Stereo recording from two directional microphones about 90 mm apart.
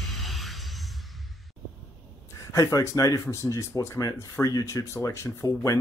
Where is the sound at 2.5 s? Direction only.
35° left (ahead or behind).